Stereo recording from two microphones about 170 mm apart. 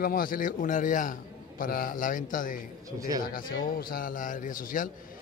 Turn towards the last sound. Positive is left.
turn(degrees=55)  # may be behind; listen again after turning